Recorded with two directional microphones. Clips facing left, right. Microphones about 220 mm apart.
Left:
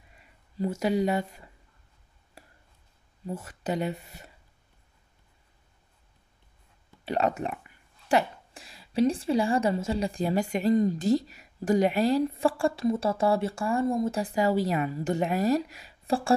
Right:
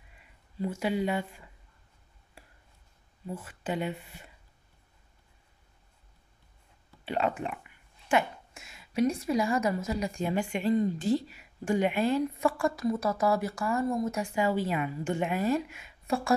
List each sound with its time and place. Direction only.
0.6 s speech: 40° left (ahead or behind)
2.4 s a sound: 40° left (ahead or behind)
3.3 s speech: 40° left (ahead or behind)
7.1 s speech: 40° left (ahead or behind)